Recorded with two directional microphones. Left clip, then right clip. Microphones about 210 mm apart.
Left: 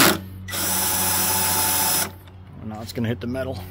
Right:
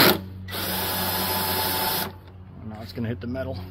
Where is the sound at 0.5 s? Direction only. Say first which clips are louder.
Left 3 dB; 15° left (ahead or behind).